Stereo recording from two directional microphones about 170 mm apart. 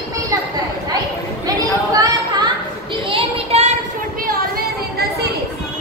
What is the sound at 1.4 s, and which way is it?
Chatter, 20° right (ahead or behind).